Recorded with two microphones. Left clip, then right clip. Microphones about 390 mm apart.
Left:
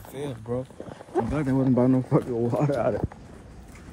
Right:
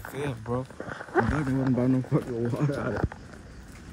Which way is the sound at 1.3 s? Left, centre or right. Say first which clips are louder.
Left 2 dB; centre.